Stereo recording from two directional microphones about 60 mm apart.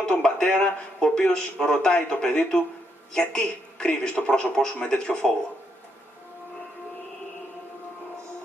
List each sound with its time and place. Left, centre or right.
0.0 s speech: centre